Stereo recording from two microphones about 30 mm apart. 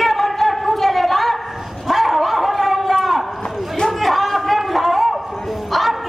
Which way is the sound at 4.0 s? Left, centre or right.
Centre.